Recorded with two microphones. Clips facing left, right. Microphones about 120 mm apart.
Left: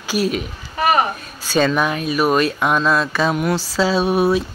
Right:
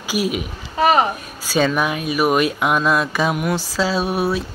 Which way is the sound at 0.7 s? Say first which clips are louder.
Right 2 dB; 20° right (ahead or behind).